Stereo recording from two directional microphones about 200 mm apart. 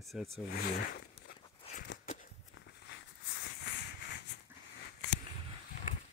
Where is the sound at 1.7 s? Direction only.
55° left (ahead or behind).